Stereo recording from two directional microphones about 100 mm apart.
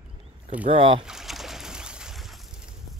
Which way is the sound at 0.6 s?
65° right (ahead or behind).